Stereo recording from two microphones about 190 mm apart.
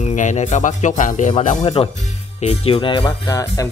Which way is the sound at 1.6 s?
25° left (ahead or behind).